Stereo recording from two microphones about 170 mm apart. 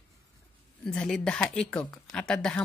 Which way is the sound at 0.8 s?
5° left (ahead or behind).